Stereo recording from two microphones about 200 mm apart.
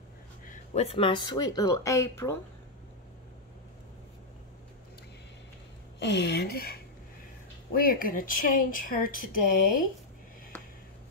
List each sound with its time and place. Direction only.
0.5 s speech: 30° left (ahead or behind); by 2.3 s 15° left (ahead or behind)
5.9 s a woman's voice: 60° left (ahead or behind)
7.8 s speech: 45° left (ahead or behind)